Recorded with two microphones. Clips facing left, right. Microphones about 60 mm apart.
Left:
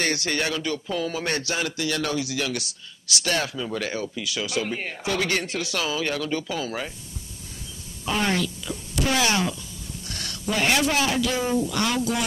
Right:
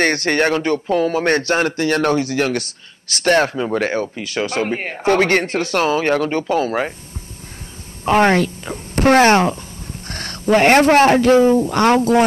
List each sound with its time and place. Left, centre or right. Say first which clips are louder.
0.0 s speech: right 9 dB; right
8.0 s speech: right 11 dB; right